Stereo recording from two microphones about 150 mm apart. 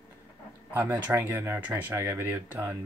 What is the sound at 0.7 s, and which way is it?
Speech, 10° right (ahead or behind).